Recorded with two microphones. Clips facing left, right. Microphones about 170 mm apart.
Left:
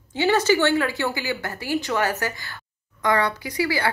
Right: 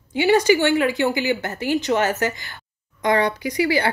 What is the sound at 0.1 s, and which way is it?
Speech, 15° right (ahead or behind).